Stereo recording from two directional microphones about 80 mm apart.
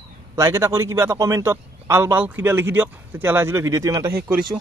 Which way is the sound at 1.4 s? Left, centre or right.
Right.